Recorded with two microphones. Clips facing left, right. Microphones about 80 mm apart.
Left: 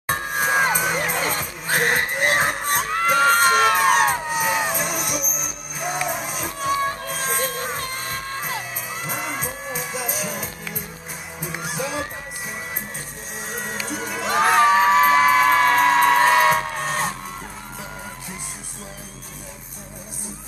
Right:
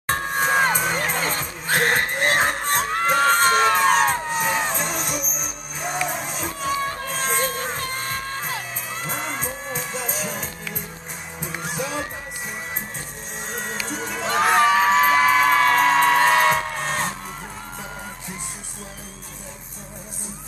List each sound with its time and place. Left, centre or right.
0.0 s music: centre
9.0 s music: centre
13.5 s run: centre
13.8 s crowd: centre